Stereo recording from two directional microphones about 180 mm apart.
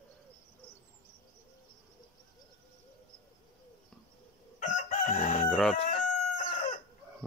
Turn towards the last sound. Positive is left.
turn(degrees=45)  # may be behind; listen again after turning